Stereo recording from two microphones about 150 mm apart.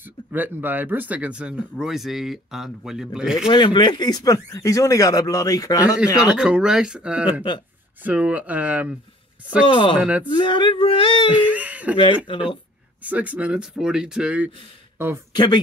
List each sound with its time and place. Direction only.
0.0 s speech: 15° right (ahead or behind)
3.4 s speech: 35° left (ahead or behind)
6.2 s speech: 5° right (ahead or behind)
9.7 s a sound: 35° left (ahead or behind)
9.9 s speech: 10° right (ahead or behind)
10.3 s a sound: 30° left (ahead or behind)
11.2 s speech: 10° right (ahead or behind)
13.0 s speech: 10° right (ahead or behind)
15.3 s speech: 30° left (ahead or behind)